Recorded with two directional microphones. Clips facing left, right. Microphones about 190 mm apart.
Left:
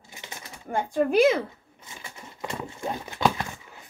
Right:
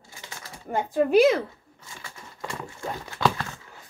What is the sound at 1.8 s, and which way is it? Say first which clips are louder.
Horse: left 1 dB; 20° left (ahead or behind).